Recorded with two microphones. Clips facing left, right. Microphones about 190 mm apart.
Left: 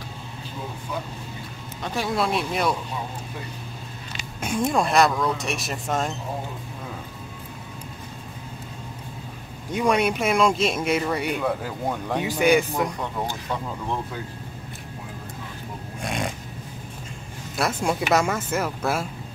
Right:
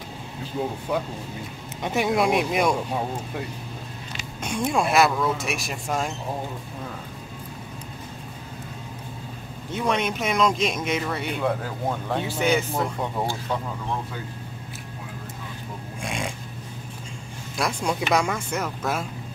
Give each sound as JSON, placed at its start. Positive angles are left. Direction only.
{"t": 1.8, "sound": "speech", "side_deg": -20}
{"t": 4.4, "sound": "speech", "side_deg": 0}
{"t": 9.7, "sound": "speech", "side_deg": 10}
{"t": 11.4, "sound": "speech", "side_deg": 0}
{"t": 12.1, "sound": "speech", "side_deg": 15}
{"t": 16.0, "sound": "snoring", "side_deg": 0}
{"t": 17.6, "sound": "speech", "side_deg": 5}